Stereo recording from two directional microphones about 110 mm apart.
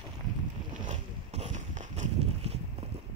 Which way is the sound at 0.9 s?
90° right.